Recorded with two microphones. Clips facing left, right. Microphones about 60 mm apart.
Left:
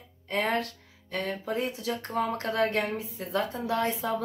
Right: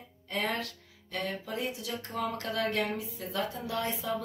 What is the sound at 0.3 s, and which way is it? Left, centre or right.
Speech, left.